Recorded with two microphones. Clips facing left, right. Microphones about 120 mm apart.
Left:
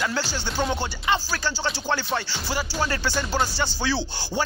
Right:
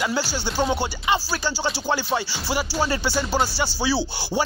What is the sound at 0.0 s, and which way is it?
Music, 10° right (ahead or behind).